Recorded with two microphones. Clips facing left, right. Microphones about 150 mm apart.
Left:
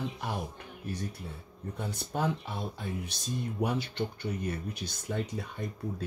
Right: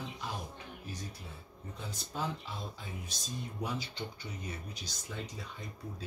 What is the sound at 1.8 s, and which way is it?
Speech, 60° left (ahead or behind).